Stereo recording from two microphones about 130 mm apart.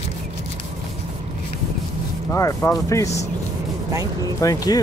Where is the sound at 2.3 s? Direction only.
20° left (ahead or behind).